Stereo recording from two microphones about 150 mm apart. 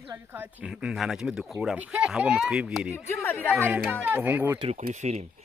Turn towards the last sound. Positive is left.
turn(degrees=-50)  # may be behind; listen again after turning